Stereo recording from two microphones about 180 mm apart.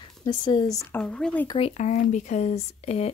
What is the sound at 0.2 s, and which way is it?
Speech, 25° left (ahead or behind).